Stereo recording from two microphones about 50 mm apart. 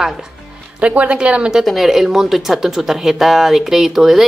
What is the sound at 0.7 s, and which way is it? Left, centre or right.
Speech, right.